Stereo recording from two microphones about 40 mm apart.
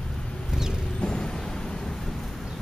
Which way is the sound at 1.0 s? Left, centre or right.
Centre.